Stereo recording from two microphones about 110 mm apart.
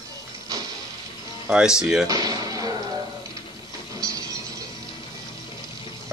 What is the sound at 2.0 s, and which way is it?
Music, 35° right (ahead or behind).